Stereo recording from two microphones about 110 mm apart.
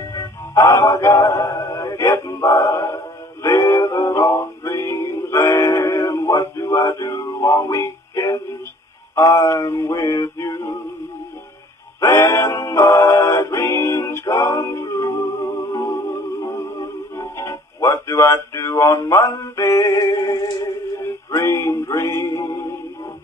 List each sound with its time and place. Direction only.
0.1 s music: 25° left (ahead or behind)
9.1 s male singing: 25° left (ahead or behind)
12.0 s music: 25° left (ahead or behind)